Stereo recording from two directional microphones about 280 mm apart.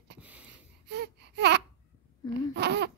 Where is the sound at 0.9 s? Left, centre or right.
Right.